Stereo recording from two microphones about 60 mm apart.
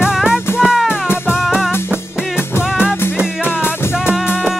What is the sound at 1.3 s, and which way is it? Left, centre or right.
Music, centre.